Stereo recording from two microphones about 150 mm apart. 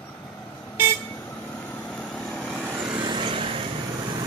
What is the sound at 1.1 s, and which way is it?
Vehicle, 10° left (ahead or behind).